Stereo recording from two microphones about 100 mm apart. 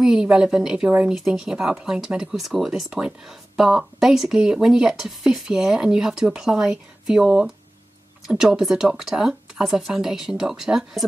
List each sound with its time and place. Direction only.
0.0 s a woman's voice: 5° right (ahead or behind)